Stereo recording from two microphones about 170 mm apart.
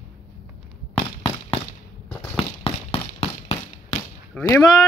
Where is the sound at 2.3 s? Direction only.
35° left (ahead or behind).